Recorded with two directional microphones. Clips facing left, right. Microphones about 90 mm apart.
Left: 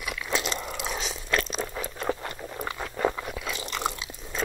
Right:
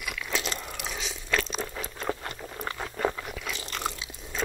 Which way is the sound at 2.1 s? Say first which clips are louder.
Left 2 dB; 15° left (ahead or behind).